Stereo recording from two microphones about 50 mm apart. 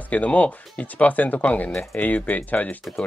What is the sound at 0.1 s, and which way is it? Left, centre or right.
Speech, left.